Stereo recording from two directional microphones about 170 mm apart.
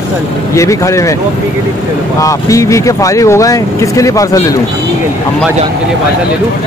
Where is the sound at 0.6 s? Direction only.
20° left (ahead or behind).